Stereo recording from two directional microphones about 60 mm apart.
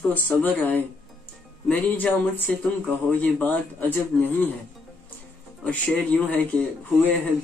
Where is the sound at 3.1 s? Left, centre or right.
Left.